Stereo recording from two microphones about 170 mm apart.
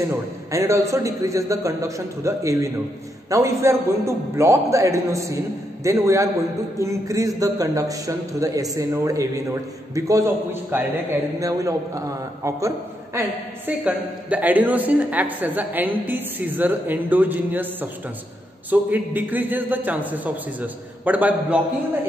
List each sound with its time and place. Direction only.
0.1 s a man's voice: 15° right (ahead or behind)